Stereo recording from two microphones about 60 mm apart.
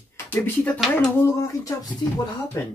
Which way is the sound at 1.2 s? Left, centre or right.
Left.